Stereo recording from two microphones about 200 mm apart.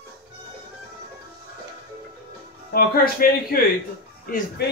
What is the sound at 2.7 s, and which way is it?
Speech, 45° left (ahead or behind).